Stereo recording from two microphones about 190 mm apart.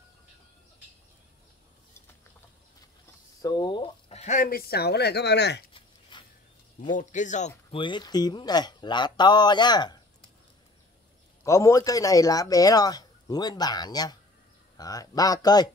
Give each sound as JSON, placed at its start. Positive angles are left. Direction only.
{"t": 3.4, "sound": "speech", "side_deg": 25}
{"t": 5.7, "sound": "a sound", "side_deg": 25}
{"t": 6.8, "sound": "speech", "side_deg": 40}
{"t": 7.8, "sound": "speech", "side_deg": 25}
{"t": 11.4, "sound": "speech", "side_deg": 15}